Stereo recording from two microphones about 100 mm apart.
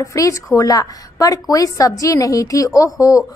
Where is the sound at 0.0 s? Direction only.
35° left (ahead or behind).